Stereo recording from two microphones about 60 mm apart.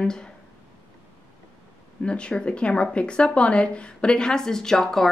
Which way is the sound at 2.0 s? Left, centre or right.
Centre.